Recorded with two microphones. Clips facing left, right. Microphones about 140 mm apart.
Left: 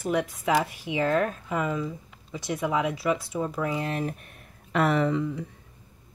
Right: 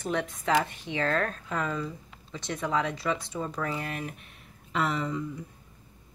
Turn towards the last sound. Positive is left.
turn(degrees=65)  # may be behind; listen again after turning